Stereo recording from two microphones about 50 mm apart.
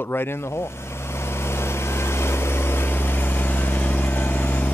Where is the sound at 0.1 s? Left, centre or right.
Left.